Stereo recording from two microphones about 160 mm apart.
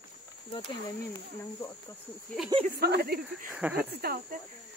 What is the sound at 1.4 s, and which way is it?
Speech, 20° left (ahead or behind).